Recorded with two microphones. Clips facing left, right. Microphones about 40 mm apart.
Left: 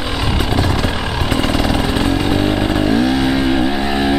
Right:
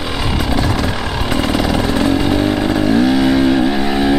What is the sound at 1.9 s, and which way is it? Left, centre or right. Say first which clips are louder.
Vehicle: right 2 dB; centre.